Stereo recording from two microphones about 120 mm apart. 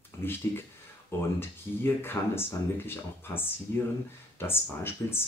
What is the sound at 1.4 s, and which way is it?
Speech, 20° left (ahead or behind).